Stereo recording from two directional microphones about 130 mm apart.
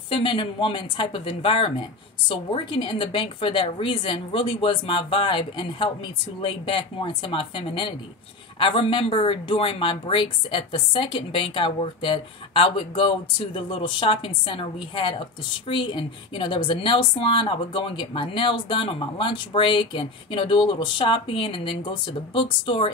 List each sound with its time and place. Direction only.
0.1 s a woman's voice: 40° left (ahead or behind)